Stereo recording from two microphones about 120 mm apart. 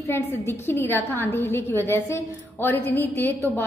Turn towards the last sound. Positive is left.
turn(degrees=15)  # may be behind; listen again after turning